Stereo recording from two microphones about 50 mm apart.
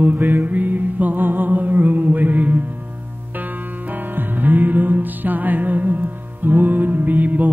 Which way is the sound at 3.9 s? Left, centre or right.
Right.